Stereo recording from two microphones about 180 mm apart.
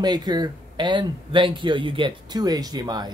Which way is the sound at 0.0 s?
25° right (ahead or behind).